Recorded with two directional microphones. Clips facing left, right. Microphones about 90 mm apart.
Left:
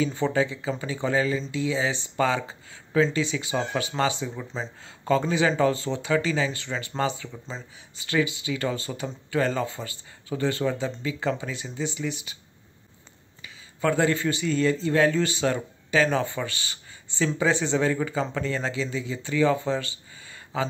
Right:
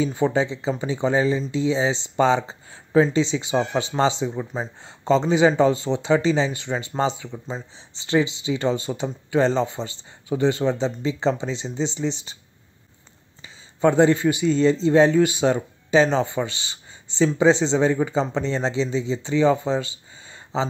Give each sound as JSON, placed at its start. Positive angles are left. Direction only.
{"t": 0.0, "sound": "speech", "side_deg": -20}
{"t": 13.4, "sound": "a man's voice", "side_deg": -25}